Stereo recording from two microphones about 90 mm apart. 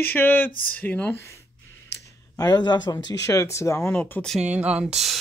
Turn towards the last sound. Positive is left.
turn(degrees=-15)  # may be behind; listen again after turning